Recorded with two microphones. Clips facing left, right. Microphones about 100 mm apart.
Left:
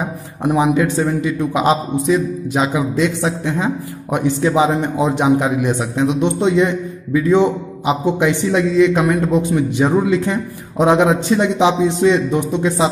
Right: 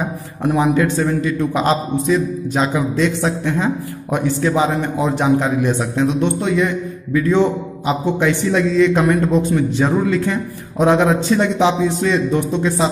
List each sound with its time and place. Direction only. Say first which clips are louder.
0.4 s a man's voice: left 1 dB; 15° left (ahead or behind)